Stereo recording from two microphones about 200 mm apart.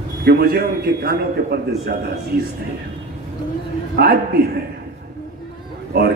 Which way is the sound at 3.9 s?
50° right (ahead or behind).